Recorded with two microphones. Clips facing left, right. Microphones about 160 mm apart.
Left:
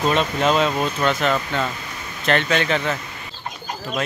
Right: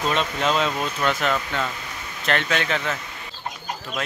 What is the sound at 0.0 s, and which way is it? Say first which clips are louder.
Speech: left 4 dB; 40° left (ahead or behind).